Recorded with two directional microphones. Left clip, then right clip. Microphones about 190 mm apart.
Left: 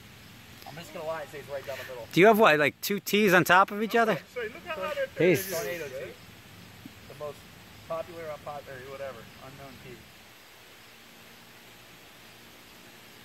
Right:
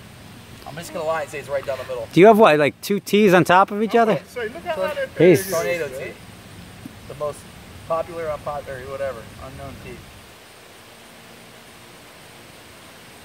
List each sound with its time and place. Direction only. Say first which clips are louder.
0.7 s speech: right 11 dB; 10° right (ahead or behind)
4.4 s speech: right 10 dB; 50° right (ahead or behind)
5.2 s speech: right 11 dB; 15° right (ahead or behind)
7.9 s speech: right 11 dB; 10° right (ahead or behind)